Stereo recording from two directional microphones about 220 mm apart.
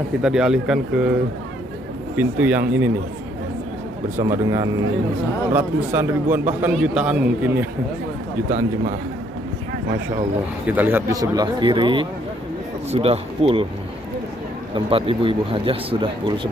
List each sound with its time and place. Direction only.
0.2 s speech: 5° right (ahead or behind)
2.1 s a man's voice: 5° right (ahead or behind)
4.2 s a man's voice: 15° right (ahead or behind)
8.5 s a man's voice: 35° right (ahead or behind)
10.7 s a man's voice: 10° right (ahead or behind); by 13.7 s 25° right (ahead or behind)
14.9 s speech: 25° right (ahead or behind)